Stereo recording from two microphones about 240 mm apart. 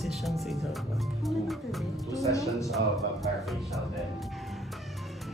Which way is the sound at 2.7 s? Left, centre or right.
Centre.